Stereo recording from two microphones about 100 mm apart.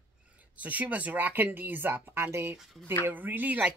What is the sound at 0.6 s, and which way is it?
Speech, 15° right (ahead or behind).